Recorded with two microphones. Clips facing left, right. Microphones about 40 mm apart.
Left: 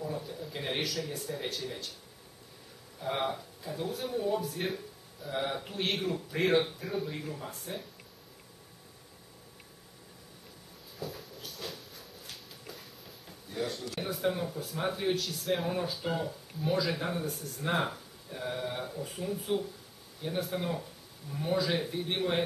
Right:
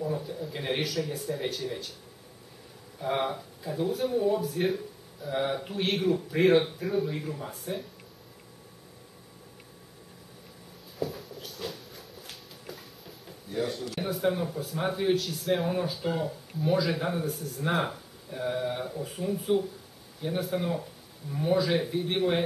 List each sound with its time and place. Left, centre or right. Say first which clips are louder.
0.0 s speech: right 5 dB; centre
3.0 s speech: right 3 dB; centre
11.0 s a sound: right 7 dB; centre
20.2 s speech: right 4 dB; centre